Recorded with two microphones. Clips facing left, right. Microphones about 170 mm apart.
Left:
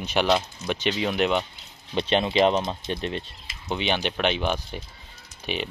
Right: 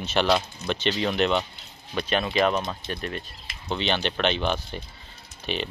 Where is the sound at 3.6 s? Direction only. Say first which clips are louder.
Even; 10° left (ahead or behind).